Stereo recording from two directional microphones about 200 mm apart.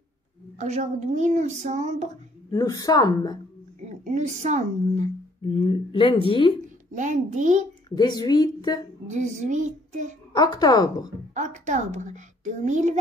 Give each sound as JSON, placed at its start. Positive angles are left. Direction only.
{"t": 0.6, "sound": "speech", "side_deg": -35}
{"t": 2.5, "sound": "speech", "side_deg": 20}
{"t": 4.0, "sound": "speech", "side_deg": -35}
{"t": 5.5, "sound": "speech", "side_deg": 25}
{"t": 6.9, "sound": "speech", "side_deg": -40}
{"t": 7.9, "sound": "speech", "side_deg": 20}
{"t": 9.0, "sound": "speech", "side_deg": -35}
{"t": 10.3, "sound": "speech", "side_deg": 20}
{"t": 11.3, "sound": "speech", "side_deg": -35}